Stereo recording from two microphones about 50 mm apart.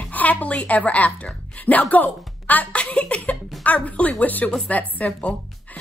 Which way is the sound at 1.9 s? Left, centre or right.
Left.